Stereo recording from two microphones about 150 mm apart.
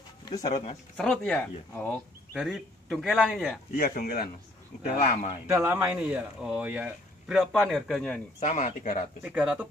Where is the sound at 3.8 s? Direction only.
75° left (ahead or behind).